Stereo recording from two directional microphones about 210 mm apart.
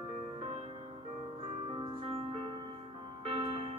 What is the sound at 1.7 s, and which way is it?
Music, 25° right (ahead or behind).